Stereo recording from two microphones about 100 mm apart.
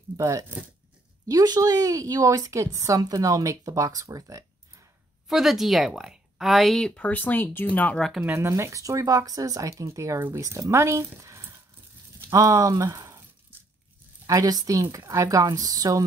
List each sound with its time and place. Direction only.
0.2 s a woman's voice: 35° right (ahead or behind)
5.3 s speech: centre (ahead or behind)
7.0 s speech: 15° left (ahead or behind)
8.4 s a woman's voice: 25° right (ahead or behind)
14.2 s a woman's voice: 35° right (ahead or behind)